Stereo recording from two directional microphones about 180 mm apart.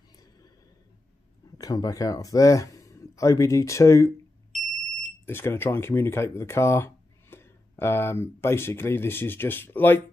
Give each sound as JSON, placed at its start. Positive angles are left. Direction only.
{"t": 1.6, "sound": "speech", "side_deg": 20}
{"t": 5.2, "sound": "speech", "side_deg": 10}